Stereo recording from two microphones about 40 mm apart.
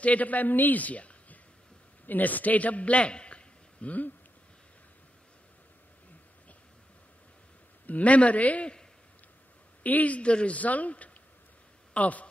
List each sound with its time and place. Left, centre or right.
0.0 s a man's voice: left
7.8 s a man's voice: left
9.8 s a man's voice: left